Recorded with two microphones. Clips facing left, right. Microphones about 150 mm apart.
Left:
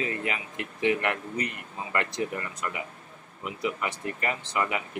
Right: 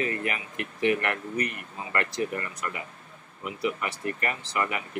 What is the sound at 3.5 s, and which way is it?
Speech, 20° left (ahead or behind).